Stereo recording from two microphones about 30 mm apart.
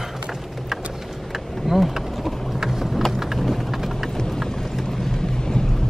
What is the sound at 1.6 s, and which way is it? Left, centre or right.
Bee, centre.